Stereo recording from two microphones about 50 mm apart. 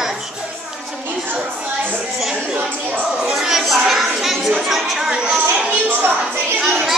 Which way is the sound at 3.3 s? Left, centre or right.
Centre.